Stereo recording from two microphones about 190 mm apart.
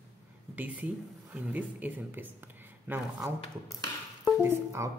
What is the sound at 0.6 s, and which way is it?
Speech, 10° right (ahead or behind).